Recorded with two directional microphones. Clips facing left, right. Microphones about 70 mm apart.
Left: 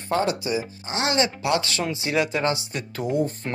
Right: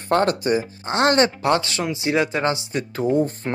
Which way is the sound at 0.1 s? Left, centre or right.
Right.